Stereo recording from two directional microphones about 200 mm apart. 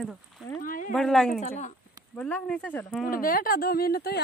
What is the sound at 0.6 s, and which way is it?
Speech, 45° left (ahead or behind).